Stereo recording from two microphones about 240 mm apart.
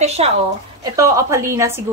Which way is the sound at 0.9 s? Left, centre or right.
Centre.